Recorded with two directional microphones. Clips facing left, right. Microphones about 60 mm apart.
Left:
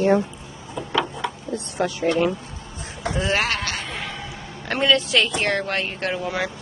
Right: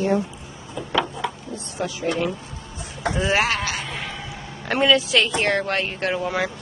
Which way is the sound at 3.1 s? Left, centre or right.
Centre.